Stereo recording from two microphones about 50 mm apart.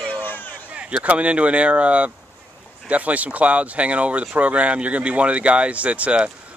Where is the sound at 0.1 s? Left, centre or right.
Left.